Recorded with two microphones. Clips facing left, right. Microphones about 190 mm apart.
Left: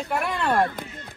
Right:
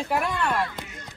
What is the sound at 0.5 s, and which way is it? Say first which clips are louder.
Speech: left 5 dB; 50° left (ahead or behind).